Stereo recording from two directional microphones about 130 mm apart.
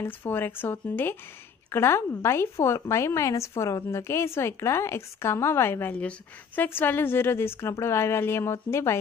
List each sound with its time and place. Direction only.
0.0 s speech: 15° left (ahead or behind)